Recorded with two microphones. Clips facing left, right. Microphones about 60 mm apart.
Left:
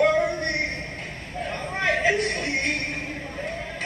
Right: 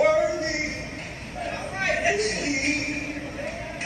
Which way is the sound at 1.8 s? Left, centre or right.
Left.